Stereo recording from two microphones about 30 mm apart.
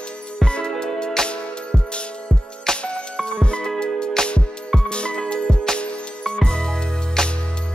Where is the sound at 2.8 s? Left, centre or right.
Left.